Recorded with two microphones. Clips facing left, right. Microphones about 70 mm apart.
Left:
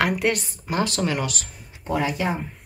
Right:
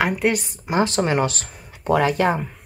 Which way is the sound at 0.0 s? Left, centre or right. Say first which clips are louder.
Right 2 dB; centre.